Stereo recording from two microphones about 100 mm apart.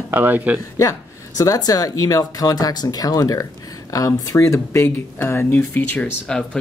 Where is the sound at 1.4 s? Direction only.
35° left (ahead or behind); by 6.6 s 10° left (ahead or behind).